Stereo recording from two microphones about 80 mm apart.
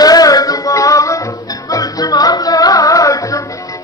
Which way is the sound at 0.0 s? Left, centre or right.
Left.